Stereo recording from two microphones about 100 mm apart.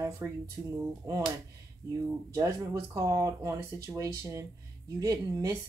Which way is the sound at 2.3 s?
30° right (ahead or behind).